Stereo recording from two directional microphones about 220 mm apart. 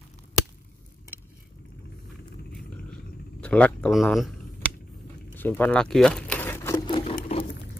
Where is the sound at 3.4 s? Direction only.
5° left (ahead or behind).